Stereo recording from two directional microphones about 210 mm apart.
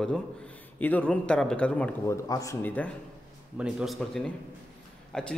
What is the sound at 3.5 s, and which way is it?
A man's voice, 5° right (ahead or behind).